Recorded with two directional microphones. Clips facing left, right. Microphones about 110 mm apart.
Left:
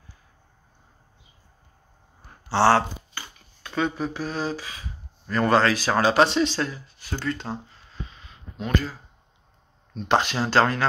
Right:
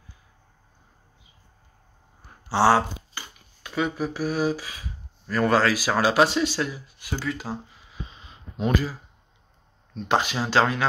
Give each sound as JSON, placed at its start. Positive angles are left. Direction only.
{"t": 2.2, "sound": "speech", "side_deg": -10}
{"t": 8.1, "sound": "a sound", "side_deg": -20}
{"t": 8.7, "sound": "speech", "side_deg": -5}